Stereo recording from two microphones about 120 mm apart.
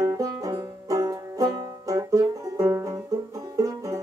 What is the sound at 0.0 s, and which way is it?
Banjo, 30° right (ahead or behind).